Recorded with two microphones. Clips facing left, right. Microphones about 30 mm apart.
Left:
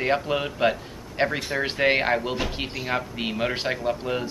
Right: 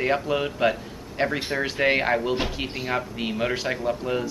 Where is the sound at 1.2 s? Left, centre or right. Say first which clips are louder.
Even; left.